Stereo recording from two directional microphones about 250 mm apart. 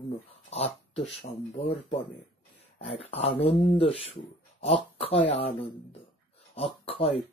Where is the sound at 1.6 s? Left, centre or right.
Left.